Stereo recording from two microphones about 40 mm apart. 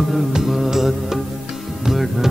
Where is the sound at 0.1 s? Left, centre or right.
Centre.